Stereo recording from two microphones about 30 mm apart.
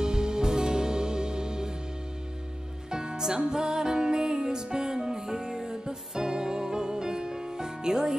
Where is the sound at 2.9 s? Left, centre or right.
Right.